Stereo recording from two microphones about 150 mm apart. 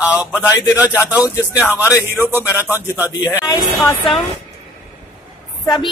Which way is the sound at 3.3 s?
25° left (ahead or behind).